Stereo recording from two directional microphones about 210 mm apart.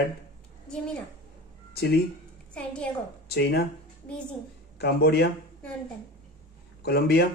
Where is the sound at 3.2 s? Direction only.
50° left (ahead or behind).